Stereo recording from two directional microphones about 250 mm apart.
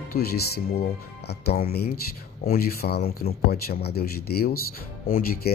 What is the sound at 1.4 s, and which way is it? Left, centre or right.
Speech, left.